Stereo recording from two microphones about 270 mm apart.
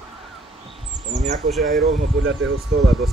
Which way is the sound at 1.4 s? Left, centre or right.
Centre.